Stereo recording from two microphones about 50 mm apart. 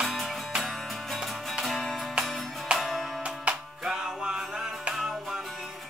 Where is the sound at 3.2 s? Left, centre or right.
Centre.